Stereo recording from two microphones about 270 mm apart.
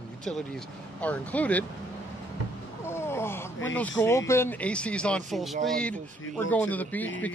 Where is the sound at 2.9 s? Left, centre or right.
Centre.